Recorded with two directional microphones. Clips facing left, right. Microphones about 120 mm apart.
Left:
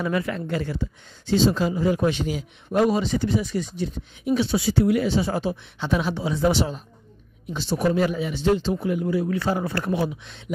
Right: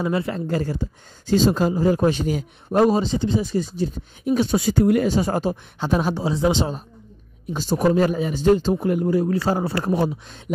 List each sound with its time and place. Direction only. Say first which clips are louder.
0.0 s speech: right 2 dB; 30° right (ahead or behind)
6.4 s speech: even; 20° right (ahead or behind)
7.5 s speech: right 3 dB; 40° right (ahead or behind)